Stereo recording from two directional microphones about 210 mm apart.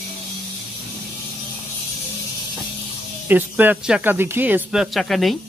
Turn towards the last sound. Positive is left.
turn(degrees=0)  # may be behind; listen again after turning